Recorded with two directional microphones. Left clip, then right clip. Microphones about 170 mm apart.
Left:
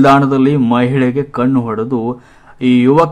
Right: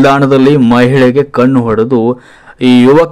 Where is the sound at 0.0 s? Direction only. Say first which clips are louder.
Right 3 dB; 25° right (ahead or behind).